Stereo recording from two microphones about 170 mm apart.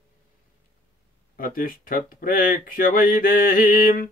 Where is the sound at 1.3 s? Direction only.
55° left (ahead or behind).